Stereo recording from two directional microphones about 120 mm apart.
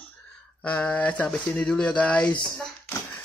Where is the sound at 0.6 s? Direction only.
10° left (ahead or behind).